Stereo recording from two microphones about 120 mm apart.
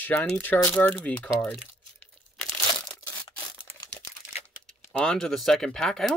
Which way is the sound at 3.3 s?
35° left (ahead or behind).